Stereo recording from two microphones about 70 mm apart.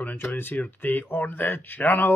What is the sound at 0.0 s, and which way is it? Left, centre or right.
Speech, left.